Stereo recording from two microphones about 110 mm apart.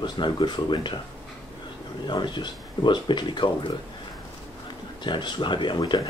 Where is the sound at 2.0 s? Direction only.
45° left (ahead or behind).